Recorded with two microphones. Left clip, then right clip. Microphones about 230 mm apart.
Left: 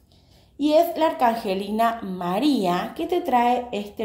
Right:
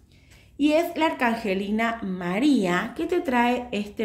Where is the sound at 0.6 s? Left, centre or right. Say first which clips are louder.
Left 3 dB; right.